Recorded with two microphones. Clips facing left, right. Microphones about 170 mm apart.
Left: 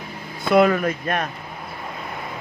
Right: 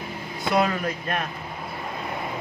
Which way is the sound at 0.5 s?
55° left (ahead or behind).